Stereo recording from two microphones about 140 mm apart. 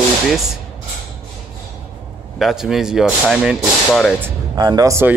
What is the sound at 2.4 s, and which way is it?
Speech, centre (ahead or behind).